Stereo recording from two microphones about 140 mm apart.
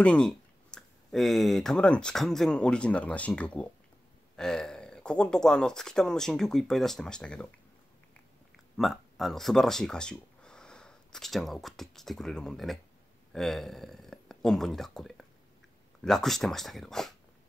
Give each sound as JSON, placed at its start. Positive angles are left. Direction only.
{"t": 0.0, "sound": "speech", "side_deg": 5}
{"t": 8.7, "sound": "speech", "side_deg": 0}